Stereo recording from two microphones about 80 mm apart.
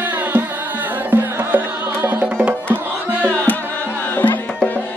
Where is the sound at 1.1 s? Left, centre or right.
Right.